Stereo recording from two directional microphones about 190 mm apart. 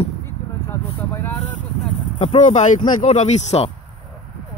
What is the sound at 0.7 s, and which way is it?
Vehicle, 10° left (ahead or behind).